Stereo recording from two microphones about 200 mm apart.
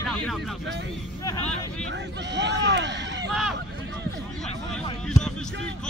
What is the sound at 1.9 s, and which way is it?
Speech, 60° right (ahead or behind).